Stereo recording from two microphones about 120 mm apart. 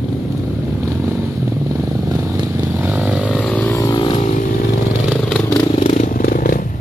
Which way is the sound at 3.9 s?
45° left (ahead or behind).